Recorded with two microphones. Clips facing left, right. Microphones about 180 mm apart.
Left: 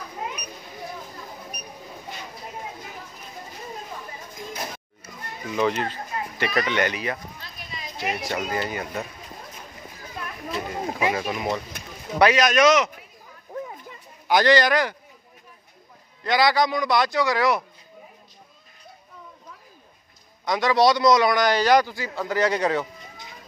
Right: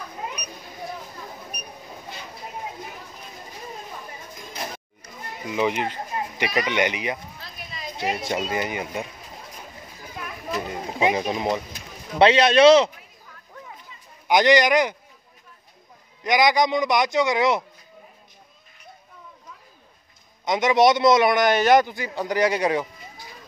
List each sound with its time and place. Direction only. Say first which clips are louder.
5.4 s a man's voice: even; 15° right (ahead or behind)
10.7 s rowboat: right 2 dB; 20° right (ahead or behind)
12.2 s a man's voice: right 3 dB; 30° right (ahead or behind)
13.9 s a sound: left 4 dB; 55° left (ahead or behind)
14.2 s a man's voice: right 1 dB; 20° right (ahead or behind)
16.2 s a man's voice: right 1 dB; 15° right (ahead or behind)
20.4 s a man's voice: right 2 dB; 20° right (ahead or behind)